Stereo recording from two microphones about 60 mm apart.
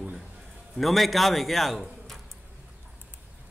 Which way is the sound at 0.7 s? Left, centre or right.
Centre.